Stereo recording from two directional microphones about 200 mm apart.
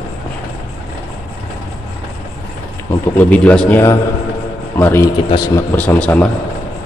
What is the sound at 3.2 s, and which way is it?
A man's voice, 5° left (ahead or behind).